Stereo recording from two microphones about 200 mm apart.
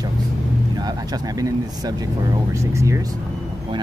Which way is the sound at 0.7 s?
20° right (ahead or behind).